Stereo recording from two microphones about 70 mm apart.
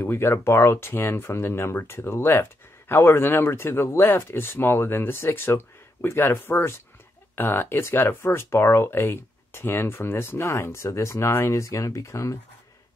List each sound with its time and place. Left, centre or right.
0.0 s speech: left